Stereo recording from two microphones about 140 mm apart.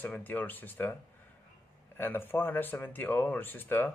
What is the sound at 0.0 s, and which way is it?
Speech, 10° left (ahead or behind).